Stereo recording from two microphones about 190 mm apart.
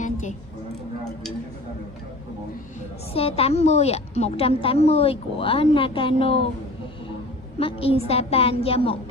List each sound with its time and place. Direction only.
0.0 s a sound: 40° left (ahead or behind)
3.1 s a woman's voice: 30° left (ahead or behind)
7.5 s a woman's voice: 30° left (ahead or behind)